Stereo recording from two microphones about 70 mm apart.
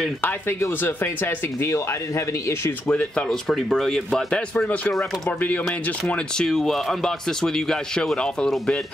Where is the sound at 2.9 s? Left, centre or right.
Centre.